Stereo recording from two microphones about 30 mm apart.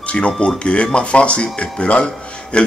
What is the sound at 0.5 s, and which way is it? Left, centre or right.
Speech, left.